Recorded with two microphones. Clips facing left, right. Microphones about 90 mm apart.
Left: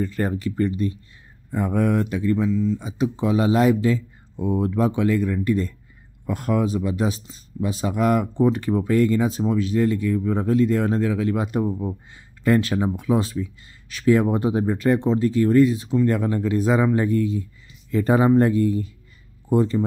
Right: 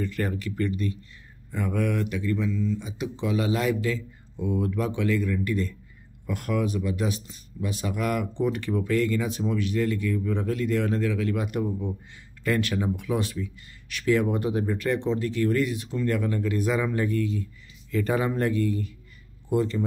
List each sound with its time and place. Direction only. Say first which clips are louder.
0.0 s speech: left 5 dB; 30° left (ahead or behind)
2.5 s speech: left 6 dB; 20° left (ahead or behind)
2.8 s speech: left 7 dB; 35° left (ahead or behind)